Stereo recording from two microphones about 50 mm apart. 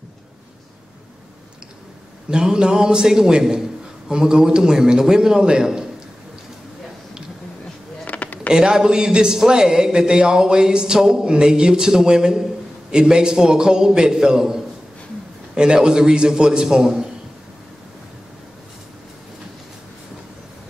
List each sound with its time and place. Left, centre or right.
2.3 s speech: centre
8.0 s a sound: left
8.5 s speech: centre